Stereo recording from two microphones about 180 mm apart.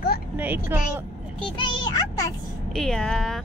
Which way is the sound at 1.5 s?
25° left (ahead or behind).